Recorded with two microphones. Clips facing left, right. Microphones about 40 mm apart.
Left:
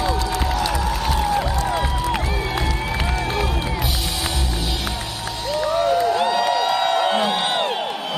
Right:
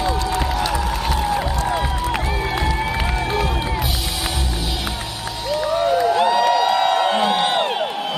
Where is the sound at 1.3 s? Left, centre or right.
Centre.